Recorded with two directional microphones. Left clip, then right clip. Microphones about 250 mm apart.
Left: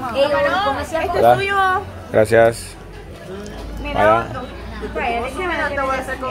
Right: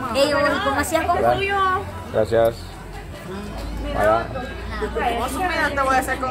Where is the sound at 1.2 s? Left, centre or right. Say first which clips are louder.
Left 5 dB; left.